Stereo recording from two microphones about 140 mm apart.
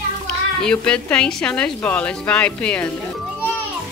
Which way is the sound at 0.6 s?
5° left (ahead or behind).